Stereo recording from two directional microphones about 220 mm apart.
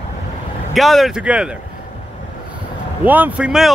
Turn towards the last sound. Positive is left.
turn(degrees=-5)  # may be behind; listen again after turning